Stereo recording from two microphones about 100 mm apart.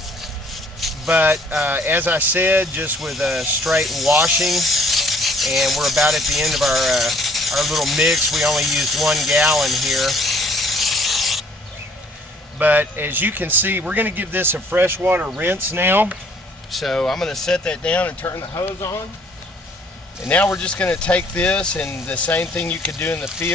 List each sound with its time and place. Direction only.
0.7 s vehicle: centre (ahead or behind)
1.1 s a man's voice: 20° right (ahead or behind)
3.0 s speech: centre (ahead or behind)
12.5 s a man's voice: 20° right (ahead or behind)
16.7 s speech: 5° left (ahead or behind)
18.2 s speech: 30° left (ahead or behind)
20.5 s speech: 10° left (ahead or behind)